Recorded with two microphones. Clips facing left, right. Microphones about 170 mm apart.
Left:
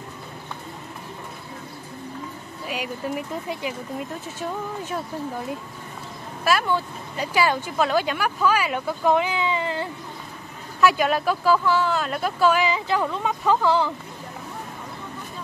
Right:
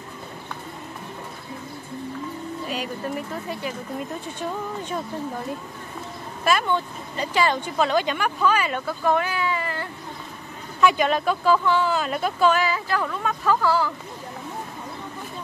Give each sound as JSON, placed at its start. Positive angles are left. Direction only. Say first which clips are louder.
{"t": 2.6, "sound": "speech", "louder": "left 2 dB", "side_deg": 10}
{"t": 6.4, "sound": "speech", "louder": "even", "side_deg": 5}
{"t": 10.8, "sound": "speech", "louder": "even", "side_deg": 5}
{"t": 12.6, "sound": "speech", "louder": "left 2 dB", "side_deg": 20}